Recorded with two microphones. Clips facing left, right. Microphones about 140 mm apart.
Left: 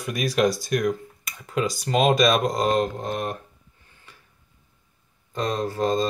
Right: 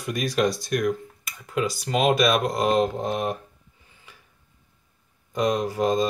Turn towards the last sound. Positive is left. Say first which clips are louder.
# right 1 dB
turn(degrees=-10)  # may be behind; listen again after turning